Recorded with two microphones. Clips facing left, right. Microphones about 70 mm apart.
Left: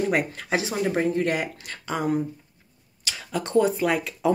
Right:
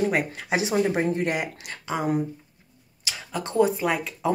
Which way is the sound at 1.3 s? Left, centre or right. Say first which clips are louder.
Left 1 dB; centre.